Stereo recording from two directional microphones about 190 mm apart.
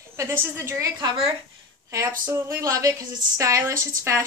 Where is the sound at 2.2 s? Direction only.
10° right (ahead or behind).